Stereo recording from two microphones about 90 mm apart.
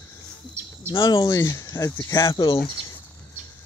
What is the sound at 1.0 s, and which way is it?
Speech, 55° left (ahead or behind).